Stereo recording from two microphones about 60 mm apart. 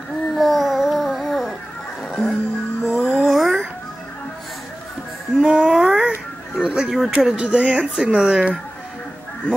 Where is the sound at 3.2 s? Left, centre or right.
Centre.